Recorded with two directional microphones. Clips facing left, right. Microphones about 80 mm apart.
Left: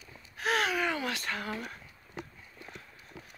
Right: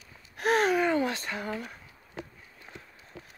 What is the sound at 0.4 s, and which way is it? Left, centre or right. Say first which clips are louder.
Gasp: right 5 dB; right.